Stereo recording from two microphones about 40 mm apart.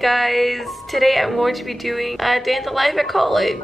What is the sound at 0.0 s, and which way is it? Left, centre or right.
Speech, centre.